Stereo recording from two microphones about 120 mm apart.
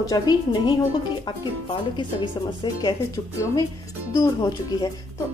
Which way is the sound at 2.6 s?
35° left (ahead or behind).